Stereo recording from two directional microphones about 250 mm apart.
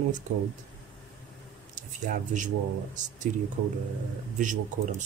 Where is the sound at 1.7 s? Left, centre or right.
Right.